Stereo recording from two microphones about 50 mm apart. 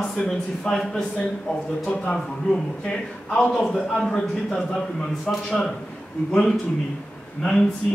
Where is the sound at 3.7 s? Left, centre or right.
Centre.